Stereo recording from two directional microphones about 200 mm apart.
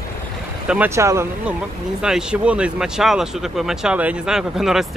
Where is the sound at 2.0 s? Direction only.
5° right (ahead or behind).